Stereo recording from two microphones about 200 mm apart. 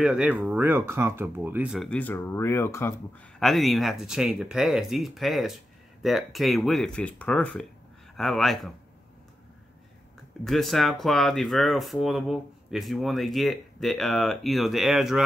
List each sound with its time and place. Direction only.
0.0 s speech: 5° right (ahead or behind); by 2.9 s 10° left (ahead or behind)
3.3 s speech: centre (ahead or behind)
10.4 s speech: centre (ahead or behind)